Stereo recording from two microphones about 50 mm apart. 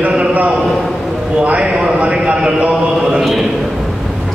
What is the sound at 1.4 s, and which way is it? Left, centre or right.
Clip-clop, right.